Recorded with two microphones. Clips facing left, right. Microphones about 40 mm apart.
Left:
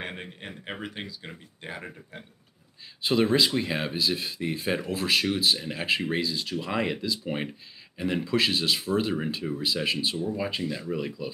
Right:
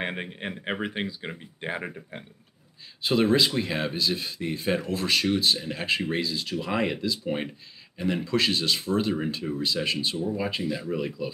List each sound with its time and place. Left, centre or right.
0.0 s speech: right
3.0 s speech: centre